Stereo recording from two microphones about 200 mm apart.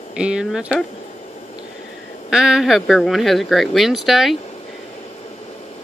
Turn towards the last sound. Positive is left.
turn(degrees=0)  # may be behind; listen again after turning